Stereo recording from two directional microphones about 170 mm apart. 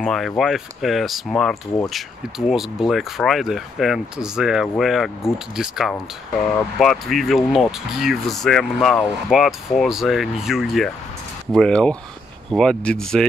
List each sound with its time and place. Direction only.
0.0 s speech: centre (ahead or behind)